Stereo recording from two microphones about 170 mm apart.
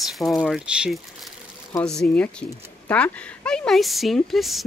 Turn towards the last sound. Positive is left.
turn(degrees=0)  # may be behind; listen again after turning